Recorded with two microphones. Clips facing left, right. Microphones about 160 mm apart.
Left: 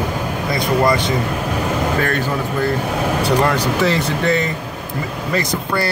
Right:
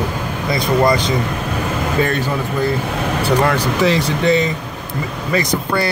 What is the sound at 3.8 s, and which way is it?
Speech, 15° right (ahead or behind).